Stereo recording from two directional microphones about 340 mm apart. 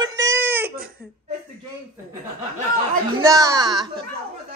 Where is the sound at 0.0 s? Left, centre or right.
Centre.